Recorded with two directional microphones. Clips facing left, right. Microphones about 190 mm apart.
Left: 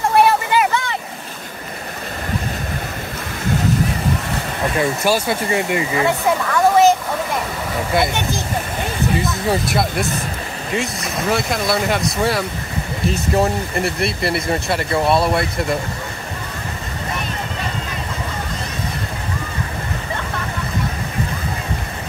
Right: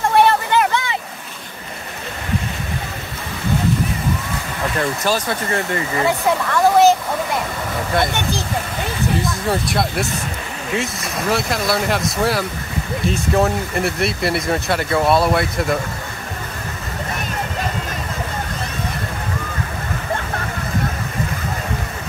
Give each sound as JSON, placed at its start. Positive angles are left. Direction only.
{"t": 0.0, "sound": "a sound", "side_deg": 5}
{"t": 4.7, "sound": "speech", "side_deg": 10}
{"t": 5.9, "sound": "speech", "side_deg": 0}
{"t": 9.2, "sound": "speech", "side_deg": 0}